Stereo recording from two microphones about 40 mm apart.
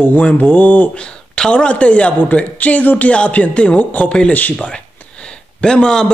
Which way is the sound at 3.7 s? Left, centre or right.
Left.